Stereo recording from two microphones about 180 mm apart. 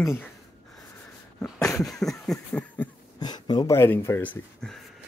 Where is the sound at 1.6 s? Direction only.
15° left (ahead or behind).